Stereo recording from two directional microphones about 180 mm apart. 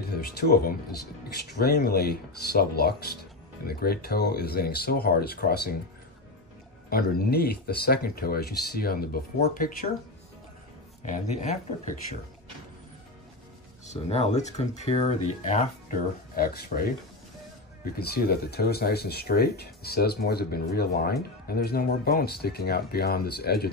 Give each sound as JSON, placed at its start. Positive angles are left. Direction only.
{"t": 0.4, "sound": "speech", "side_deg": 60}
{"t": 6.9, "sound": "speech", "side_deg": 55}
{"t": 11.0, "sound": "speech", "side_deg": 40}
{"t": 13.8, "sound": "speech", "side_deg": 35}
{"t": 17.9, "sound": "speech", "side_deg": 60}